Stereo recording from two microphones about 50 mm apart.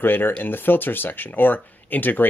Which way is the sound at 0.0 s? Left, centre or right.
Left.